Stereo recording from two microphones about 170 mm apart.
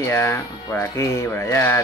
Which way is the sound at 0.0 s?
15° left (ahead or behind).